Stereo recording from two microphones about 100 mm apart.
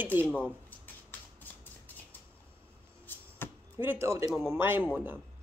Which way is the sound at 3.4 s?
20° left (ahead or behind).